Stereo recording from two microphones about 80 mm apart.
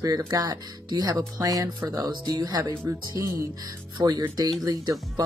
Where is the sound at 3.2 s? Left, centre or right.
Right.